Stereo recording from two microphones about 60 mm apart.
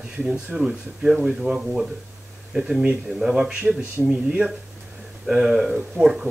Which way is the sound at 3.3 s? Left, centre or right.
Centre.